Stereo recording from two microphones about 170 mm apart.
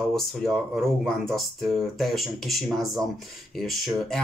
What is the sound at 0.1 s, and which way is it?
Speech, centre (ahead or behind).